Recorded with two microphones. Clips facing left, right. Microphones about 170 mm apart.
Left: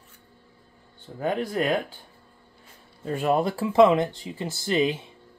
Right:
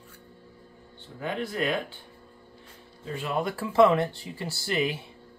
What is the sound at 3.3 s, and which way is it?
Speech, 30° left (ahead or behind).